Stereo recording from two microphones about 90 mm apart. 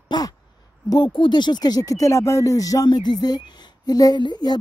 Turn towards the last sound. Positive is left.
turn(degrees=50)  # may be behind; listen again after turning